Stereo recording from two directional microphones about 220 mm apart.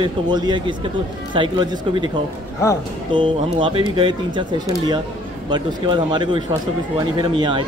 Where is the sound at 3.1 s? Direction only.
20° right (ahead or behind).